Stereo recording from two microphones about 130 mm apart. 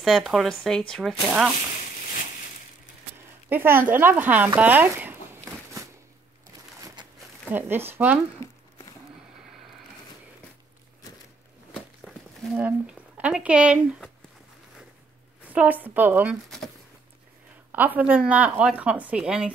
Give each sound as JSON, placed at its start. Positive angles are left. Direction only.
{"t": 0.0, "sound": "speech", "side_deg": 0}
{"t": 1.2, "sound": "a woman's voice", "side_deg": -10}
{"t": 3.4, "sound": "a woman's voice", "side_deg": -15}
{"t": 4.6, "sound": "a sound", "side_deg": -15}
{"t": 7.5, "sound": "a woman's voice", "side_deg": -15}
{"t": 8.4, "sound": "a sound", "side_deg": 20}
{"t": 13.2, "sound": "a woman's voice", "side_deg": -10}
{"t": 15.5, "sound": "a woman's voice", "side_deg": -10}
{"t": 16.4, "sound": "a sound", "side_deg": 5}
{"t": 17.6, "sound": "a woman's voice", "side_deg": -15}